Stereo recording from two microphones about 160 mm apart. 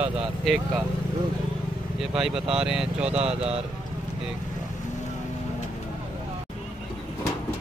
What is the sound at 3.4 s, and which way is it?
Speech, 40° right (ahead or behind).